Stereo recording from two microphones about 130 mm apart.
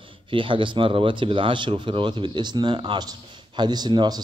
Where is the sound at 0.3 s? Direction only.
40° right (ahead or behind).